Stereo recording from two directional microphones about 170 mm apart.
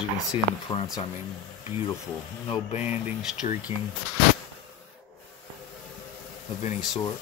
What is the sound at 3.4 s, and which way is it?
Speech, 45° left (ahead or behind).